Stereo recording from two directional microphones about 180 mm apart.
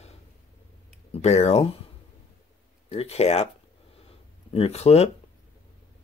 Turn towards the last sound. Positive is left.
turn(degrees=35)  # may be behind; listen again after turning